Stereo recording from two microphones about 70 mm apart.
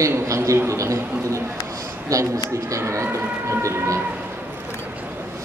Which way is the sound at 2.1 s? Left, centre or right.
Right.